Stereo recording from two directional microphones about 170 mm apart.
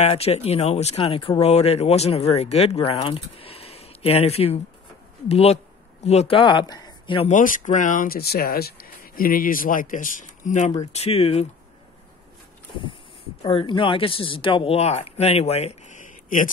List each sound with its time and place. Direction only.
0.0 s speech: 40° left (ahead or behind)
7.2 s speech: 50° left (ahead or behind)
13.4 s speech: 30° left (ahead or behind); by 16.4 s 50° left (ahead or behind)